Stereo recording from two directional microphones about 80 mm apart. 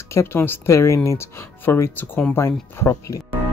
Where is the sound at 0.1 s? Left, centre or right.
Left.